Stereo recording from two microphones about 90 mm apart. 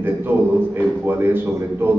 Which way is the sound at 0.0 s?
25° right (ahead or behind).